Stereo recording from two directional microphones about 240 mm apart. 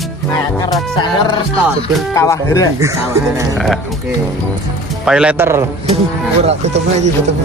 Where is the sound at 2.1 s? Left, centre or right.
Centre.